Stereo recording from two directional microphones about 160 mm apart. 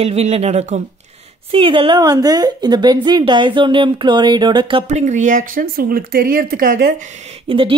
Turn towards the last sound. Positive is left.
turn(degrees=-35)  # may be behind; listen again after turning